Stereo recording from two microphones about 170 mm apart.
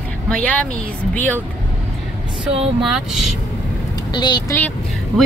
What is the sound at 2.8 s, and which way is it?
Speech, centre (ahead or behind).